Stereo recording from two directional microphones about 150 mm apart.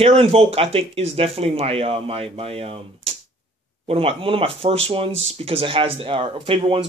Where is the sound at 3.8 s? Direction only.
40° right (ahead or behind).